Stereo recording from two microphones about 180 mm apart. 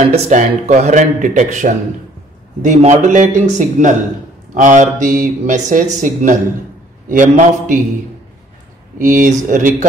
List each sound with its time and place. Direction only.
0.0 s speech: 40° right (ahead or behind)
8.9 s speech: 45° right (ahead or behind)